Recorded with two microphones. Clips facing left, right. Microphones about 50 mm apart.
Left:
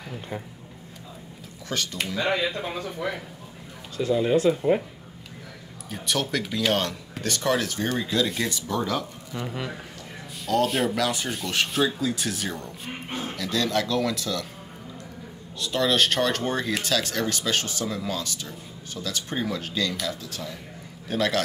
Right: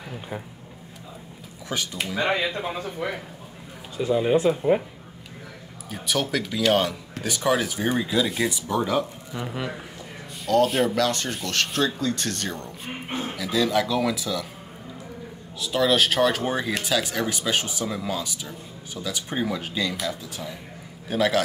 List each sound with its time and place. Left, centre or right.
1.7 s speech: centre
2.1 s speech: right
3.9 s speech: centre
5.9 s speech: centre
15.6 s speech: centre